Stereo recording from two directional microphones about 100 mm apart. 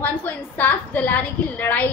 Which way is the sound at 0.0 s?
15° left (ahead or behind).